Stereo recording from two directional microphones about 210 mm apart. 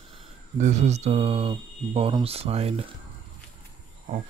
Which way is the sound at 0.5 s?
35° right (ahead or behind).